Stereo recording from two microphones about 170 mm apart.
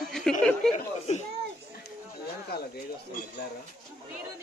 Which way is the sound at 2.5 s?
65° left (ahead or behind).